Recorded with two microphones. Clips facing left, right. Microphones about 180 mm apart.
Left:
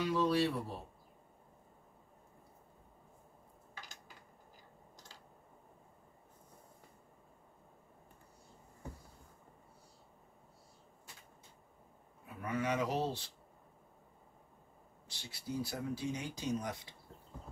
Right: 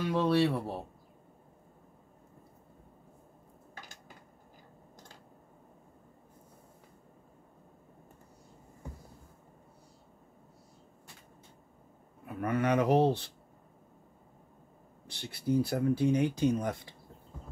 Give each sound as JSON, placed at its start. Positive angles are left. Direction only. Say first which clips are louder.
{"t": 0.0, "sound": "speech", "louder": "right 4 dB", "side_deg": -60}
{"t": 12.3, "sound": "speech", "louder": "right 7 dB", "side_deg": -60}
{"t": 15.0, "sound": "speech", "louder": "right 12 dB", "side_deg": -60}